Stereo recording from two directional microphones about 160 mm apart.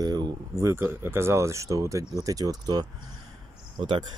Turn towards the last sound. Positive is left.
turn(degrees=-35)  # may be behind; listen again after turning